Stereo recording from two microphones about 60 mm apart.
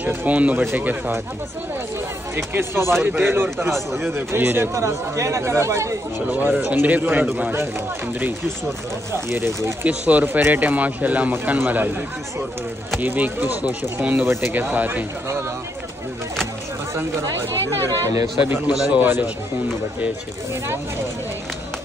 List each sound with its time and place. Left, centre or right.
0.1 s a man's voice: right
2.3 s speech: right
3.7 s a man's voice: centre
4.1 s speech: right
4.7 s speech: right
6.2 s speech: right
9.1 s speech: right
9.8 s a man's voice: right
13.0 s a man's voice: right
14.1 s speech: right
14.5 s a man's voice: right
17.6 s speech: right
18.7 s a man's voice: centre